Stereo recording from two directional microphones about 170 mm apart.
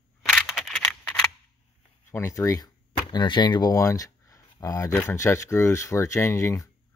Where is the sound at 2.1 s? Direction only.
15° left (ahead or behind).